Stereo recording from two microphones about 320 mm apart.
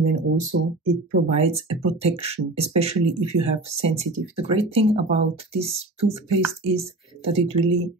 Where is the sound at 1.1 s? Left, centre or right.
Centre.